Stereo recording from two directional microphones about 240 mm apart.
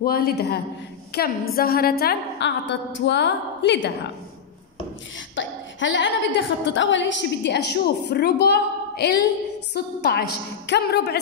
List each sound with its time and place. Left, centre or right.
0.0 s a woman's voice: left
5.3 s a woman's voice: left